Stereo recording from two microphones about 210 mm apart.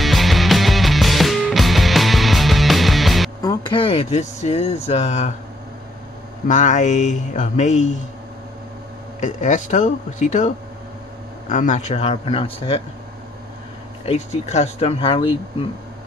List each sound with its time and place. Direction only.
0.0 s music: centre (ahead or behind)
3.4 s speech: 20° left (ahead or behind)
6.4 s a man's voice: 35° left (ahead or behind)
9.2 s a man's voice: 35° left (ahead or behind)
14.0 s speech: 30° left (ahead or behind)